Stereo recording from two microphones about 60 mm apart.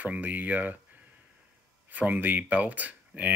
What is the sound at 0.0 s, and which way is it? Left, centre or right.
Speech, right.